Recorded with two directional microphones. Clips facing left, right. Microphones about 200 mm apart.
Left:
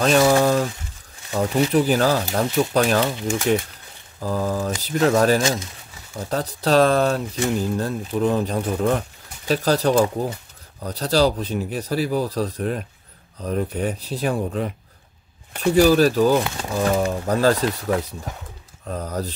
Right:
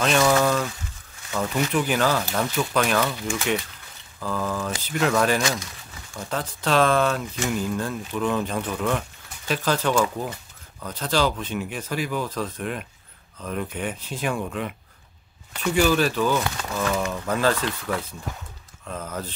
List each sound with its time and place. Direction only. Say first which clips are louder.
0.0 s speech: left 4 dB; 40° left (ahead or behind)
4.2 s speech: left 4 dB; 40° left (ahead or behind)
5.4 s speech: left 4 dB; 25° left (ahead or behind)
6.1 s speech: left 4 dB; 35° left (ahead or behind)
16.4 s speech: left 1 dB; 25° left (ahead or behind)
16.7 s speech: left 6 dB; 35° left (ahead or behind)